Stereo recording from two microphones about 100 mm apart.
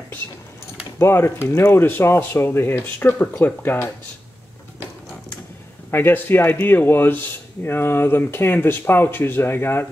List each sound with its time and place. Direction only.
0.9 s speech: 25° left (ahead or behind)
5.9 s speech: 20° left (ahead or behind)